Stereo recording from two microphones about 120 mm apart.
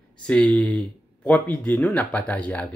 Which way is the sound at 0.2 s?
5° left (ahead or behind).